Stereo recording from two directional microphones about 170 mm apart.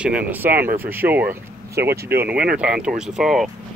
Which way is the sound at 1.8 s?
75° right (ahead or behind).